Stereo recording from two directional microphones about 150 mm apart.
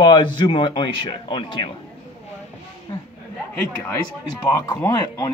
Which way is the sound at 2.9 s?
30° left (ahead or behind).